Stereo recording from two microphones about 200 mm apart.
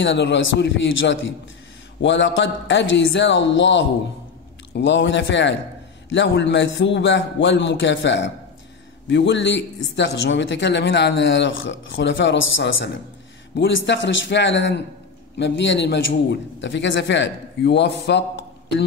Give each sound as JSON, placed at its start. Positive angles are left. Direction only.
{"t": 0.0, "sound": "speech", "side_deg": 65}